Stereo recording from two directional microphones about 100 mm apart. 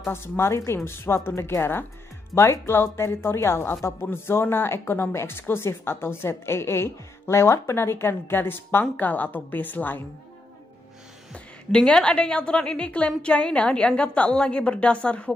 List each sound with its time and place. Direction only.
0.0 s a woman's voice: 25° left (ahead or behind)
11.3 s a woman's voice: 5° left (ahead or behind)